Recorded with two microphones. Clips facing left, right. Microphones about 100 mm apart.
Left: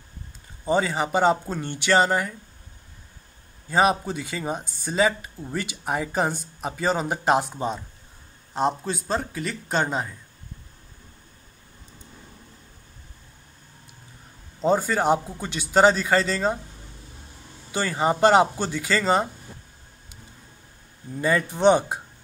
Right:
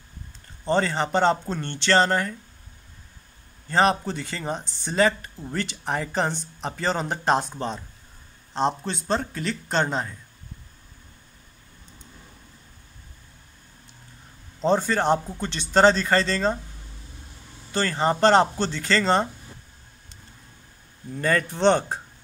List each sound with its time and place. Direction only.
0.7 s speech: 10° left (ahead or behind)
3.6 s speech: 10° left (ahead or behind)
14.6 s speech: 5° left (ahead or behind)
17.6 s speech: 10° left (ahead or behind)
21.2 s speech: 10° left (ahead or behind)